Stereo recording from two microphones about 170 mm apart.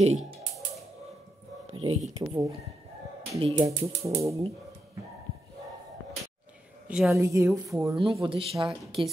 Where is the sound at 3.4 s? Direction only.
30° right (ahead or behind).